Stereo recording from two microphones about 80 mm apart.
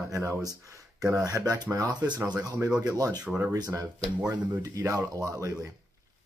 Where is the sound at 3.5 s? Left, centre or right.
Right.